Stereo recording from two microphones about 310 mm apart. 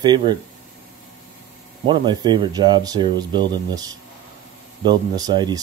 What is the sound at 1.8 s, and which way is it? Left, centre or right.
Speech, centre.